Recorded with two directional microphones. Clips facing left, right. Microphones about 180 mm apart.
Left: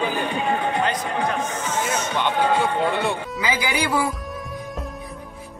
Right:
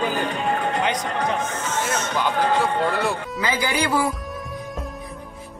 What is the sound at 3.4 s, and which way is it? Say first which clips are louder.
Speech: right 1 dB; 10° left (ahead or behind).